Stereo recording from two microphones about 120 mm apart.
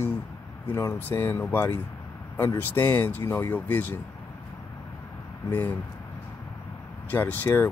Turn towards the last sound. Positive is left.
turn(degrees=15)  # may be behind; listen again after turning